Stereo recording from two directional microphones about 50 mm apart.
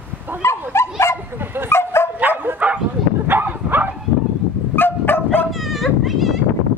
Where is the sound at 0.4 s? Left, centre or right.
Left.